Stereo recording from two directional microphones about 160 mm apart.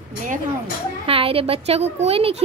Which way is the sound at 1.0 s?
35° right (ahead or behind).